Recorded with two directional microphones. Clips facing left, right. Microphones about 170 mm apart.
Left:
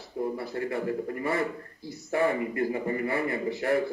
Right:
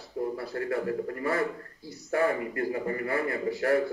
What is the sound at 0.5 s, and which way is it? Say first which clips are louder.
Speech: right 1 dB; 20° left (ahead or behind).